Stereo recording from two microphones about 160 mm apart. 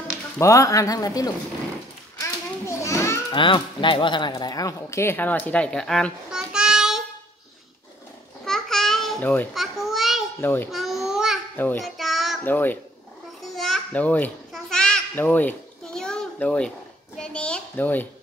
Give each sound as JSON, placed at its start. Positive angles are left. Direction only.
{"t": 0.4, "sound": "speech", "side_deg": 20}
{"t": 2.1, "sound": "children playing", "side_deg": 20}
{"t": 3.3, "sound": "speech", "side_deg": 30}
{"t": 8.5, "sound": "babbling", "side_deg": 5}
{"t": 10.4, "sound": "speech", "side_deg": 10}
{"t": 10.7, "sound": "babbling", "side_deg": 0}
{"t": 11.5, "sound": "a child's voice", "side_deg": 10}
{"t": 11.8, "sound": "child singing", "side_deg": 0}
{"t": 12.4, "sound": "speech", "side_deg": 10}
{"t": 13.4, "sound": "children playing", "side_deg": 0}